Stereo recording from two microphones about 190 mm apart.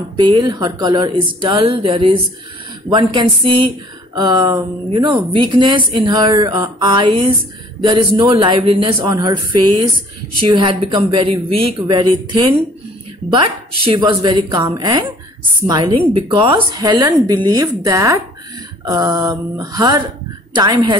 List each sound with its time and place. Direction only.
0.2 s speech: 25° right (ahead or behind)
9.0 s speech: 15° right (ahead or behind)
9.3 s speech: 25° right (ahead or behind)
13.8 s speech: 25° right (ahead or behind)